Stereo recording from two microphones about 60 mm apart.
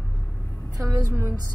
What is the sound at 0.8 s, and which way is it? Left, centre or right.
Speech, right.